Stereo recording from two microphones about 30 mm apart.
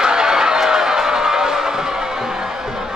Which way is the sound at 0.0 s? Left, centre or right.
Right.